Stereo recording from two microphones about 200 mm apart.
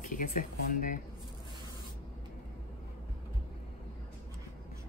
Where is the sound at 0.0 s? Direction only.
40° left (ahead or behind).